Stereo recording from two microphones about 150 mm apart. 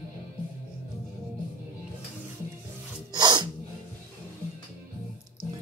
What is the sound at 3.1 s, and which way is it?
Sneeze, 30° right (ahead or behind).